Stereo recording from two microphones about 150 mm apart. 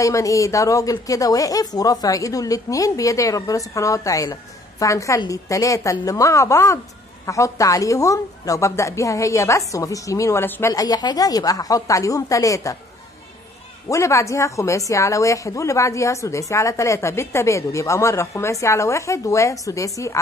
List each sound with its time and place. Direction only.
0.0 s speech: 20° left (ahead or behind)
13.8 s speech: 20° left (ahead or behind)